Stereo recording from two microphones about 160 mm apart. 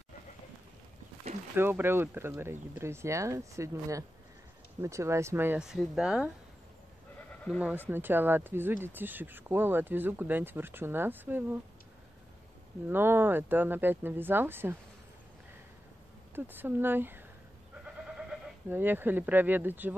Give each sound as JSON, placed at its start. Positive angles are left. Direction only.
{"t": 1.5, "sound": "speech", "side_deg": -15}
{"t": 7.4, "sound": "speech", "side_deg": -5}
{"t": 12.9, "sound": "speech", "side_deg": -15}
{"t": 16.3, "sound": "speech", "side_deg": -15}
{"t": 18.7, "sound": "speech", "side_deg": -10}